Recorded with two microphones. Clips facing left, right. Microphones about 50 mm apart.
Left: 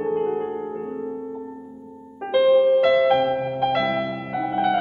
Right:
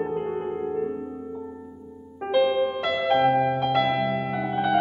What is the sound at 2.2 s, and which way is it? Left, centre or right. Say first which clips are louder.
Music: left 5 dB; centre.